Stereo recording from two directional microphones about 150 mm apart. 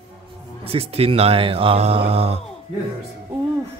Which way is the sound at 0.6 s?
40° right (ahead or behind).